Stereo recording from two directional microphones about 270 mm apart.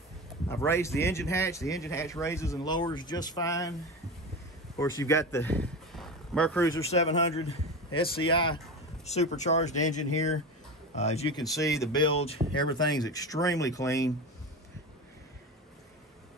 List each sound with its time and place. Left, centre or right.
0.5 s speech: centre
4.7 s speech: centre
6.9 s a man's voice: left